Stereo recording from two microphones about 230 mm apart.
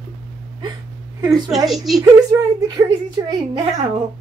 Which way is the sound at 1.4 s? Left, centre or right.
Centre.